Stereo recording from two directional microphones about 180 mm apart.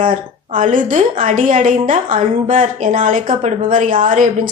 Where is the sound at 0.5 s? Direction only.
45° right (ahead or behind).